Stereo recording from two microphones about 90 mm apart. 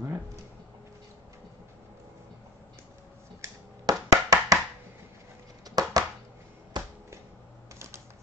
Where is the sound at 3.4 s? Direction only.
40° right (ahead or behind).